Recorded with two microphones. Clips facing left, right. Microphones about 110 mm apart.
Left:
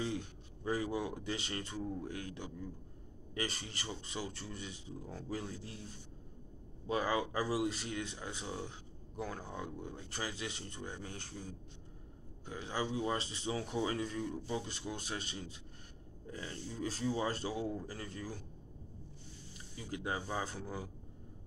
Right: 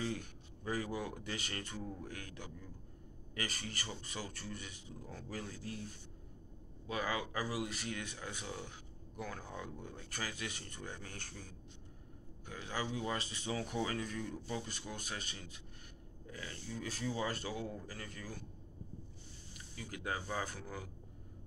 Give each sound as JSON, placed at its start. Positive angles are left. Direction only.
{"t": 0.0, "sound": "speech", "side_deg": 25}
{"t": 6.9, "sound": "speech", "side_deg": 30}
{"t": 12.4, "sound": "speech", "side_deg": 25}
{"t": 19.8, "sound": "speech", "side_deg": 25}